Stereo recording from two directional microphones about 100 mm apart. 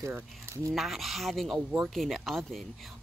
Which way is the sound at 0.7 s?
Centre (ahead or behind).